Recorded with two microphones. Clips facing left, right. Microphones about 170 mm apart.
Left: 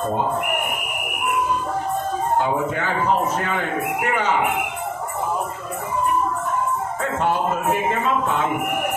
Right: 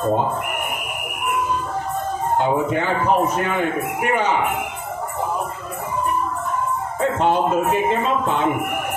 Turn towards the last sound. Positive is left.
turn(degrees=-20)  # may be behind; listen again after turning